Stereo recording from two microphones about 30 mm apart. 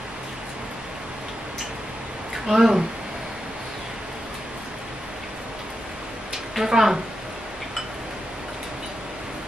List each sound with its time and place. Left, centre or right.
2.3 s speech: centre
6.6 s speech: centre